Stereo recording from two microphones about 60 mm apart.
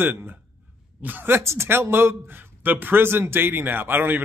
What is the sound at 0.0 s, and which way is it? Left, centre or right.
A man's voice, right.